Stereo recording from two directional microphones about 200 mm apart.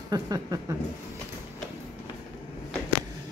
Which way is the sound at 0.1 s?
20° right (ahead or behind).